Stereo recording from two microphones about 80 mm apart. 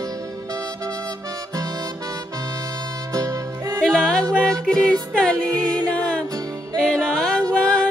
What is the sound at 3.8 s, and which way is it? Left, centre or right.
Music, centre.